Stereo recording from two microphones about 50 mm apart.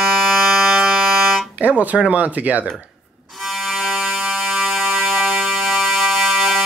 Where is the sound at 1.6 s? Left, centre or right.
Right.